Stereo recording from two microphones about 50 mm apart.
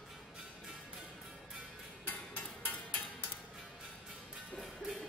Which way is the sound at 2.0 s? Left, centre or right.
Left.